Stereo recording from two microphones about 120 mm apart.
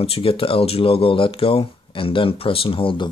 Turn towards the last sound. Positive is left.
turn(degrees=45)  # may be behind; listen again after turning